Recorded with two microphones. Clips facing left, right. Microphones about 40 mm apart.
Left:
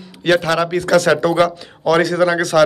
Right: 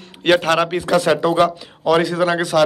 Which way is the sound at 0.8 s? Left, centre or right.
Centre.